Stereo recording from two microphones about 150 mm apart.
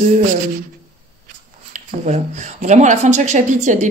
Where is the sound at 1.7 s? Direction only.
50° right (ahead or behind).